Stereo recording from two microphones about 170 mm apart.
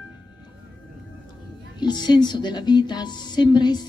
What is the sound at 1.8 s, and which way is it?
A woman's voice, 25° left (ahead or behind).